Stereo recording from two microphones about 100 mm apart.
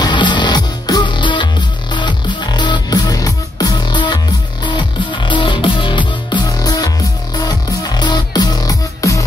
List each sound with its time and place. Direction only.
0.0 s music: 50° left (ahead or behind)